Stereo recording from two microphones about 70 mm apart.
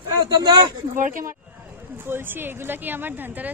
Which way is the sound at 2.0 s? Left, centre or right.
Right.